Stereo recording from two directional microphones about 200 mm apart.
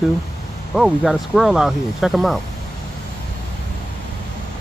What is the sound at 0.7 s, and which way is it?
Speech, centre (ahead or behind).